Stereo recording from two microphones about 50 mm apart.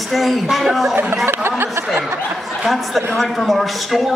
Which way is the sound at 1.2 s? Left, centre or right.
Right.